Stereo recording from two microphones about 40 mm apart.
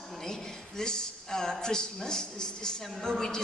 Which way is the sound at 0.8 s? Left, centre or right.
Centre.